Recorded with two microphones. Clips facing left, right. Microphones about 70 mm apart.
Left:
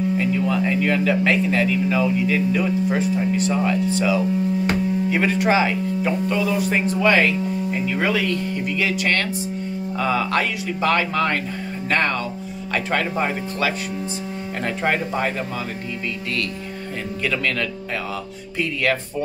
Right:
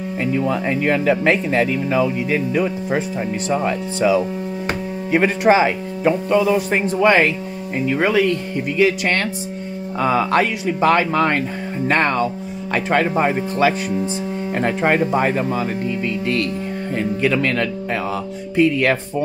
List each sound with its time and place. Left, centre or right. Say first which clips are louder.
0.3 s speech: right 1 dB; right
5.1 s speech: right 6 dB; right
8.7 s speech: right 6 dB; right
17.2 s speech: right 4 dB; right